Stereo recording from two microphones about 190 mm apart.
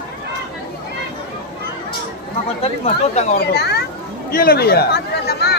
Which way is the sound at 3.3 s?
60° left (ahead or behind).